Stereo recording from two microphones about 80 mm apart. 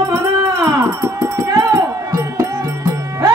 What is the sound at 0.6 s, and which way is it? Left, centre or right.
Music, right.